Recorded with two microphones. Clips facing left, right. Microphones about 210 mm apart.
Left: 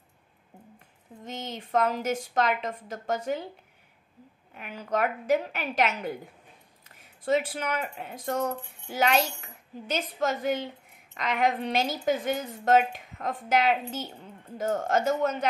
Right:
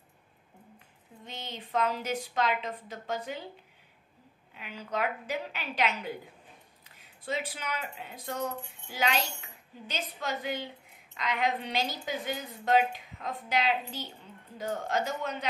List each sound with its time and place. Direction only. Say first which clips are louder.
1.2 s a woman's voice: left 6 dB; 45° left (ahead or behind)
4.6 s a woman's voice: left 5 dB; 45° left (ahead or behind)
7.2 s a woman's voice: left 8 dB; 50° left (ahead or behind)
9.8 s a woman's voice: left 7 dB; 45° left (ahead or behind)